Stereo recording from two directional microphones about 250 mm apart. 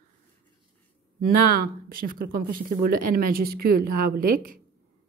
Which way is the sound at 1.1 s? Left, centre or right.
Right.